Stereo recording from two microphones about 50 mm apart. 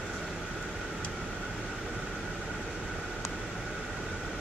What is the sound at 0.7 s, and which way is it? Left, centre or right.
Vehicle, centre.